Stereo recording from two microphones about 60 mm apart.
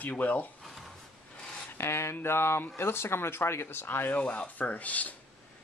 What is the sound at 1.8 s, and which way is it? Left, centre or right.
Speech, left.